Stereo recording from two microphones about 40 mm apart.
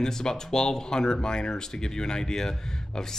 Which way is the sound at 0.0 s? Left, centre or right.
Centre.